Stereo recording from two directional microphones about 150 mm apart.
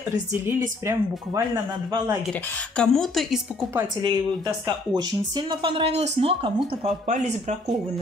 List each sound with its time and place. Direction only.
0.3 s speech: 15° right (ahead or behind)
2.8 s a woman's voice: centre (ahead or behind)
4.0 s speech: 30° right (ahead or behind); by 7.7 s 50° right (ahead or behind)